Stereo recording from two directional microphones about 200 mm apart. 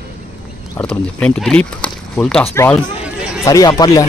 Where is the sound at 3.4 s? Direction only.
15° left (ahead or behind).